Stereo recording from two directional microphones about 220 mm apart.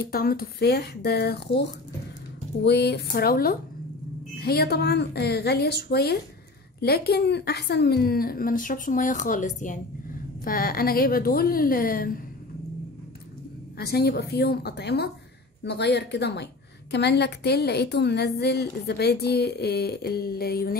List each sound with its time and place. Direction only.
0.1 s a woman's voice: 45° left (ahead or behind)
13.7 s a woman's voice: 45° left (ahead or behind)